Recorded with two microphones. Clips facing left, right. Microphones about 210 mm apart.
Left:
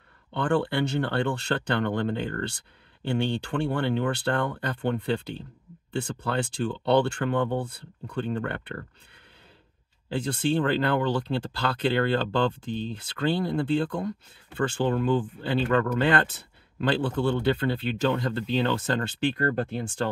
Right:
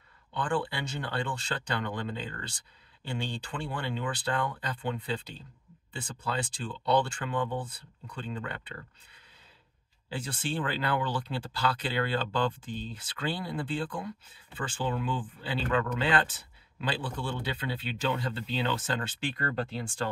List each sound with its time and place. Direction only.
0.3 s speech: 60° left (ahead or behind)
10.0 s speech: 60° left (ahead or behind)